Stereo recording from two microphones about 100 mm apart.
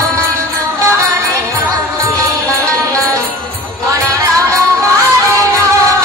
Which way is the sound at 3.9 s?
35° right (ahead or behind).